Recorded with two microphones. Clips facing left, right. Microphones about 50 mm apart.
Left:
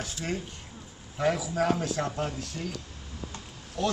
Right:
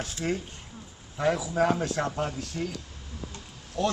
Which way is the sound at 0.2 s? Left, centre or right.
Centre.